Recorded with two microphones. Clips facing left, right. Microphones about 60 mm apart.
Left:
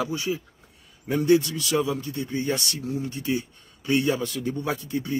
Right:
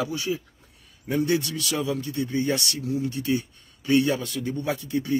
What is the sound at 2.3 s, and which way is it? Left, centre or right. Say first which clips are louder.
Speech: right 1 dB; left.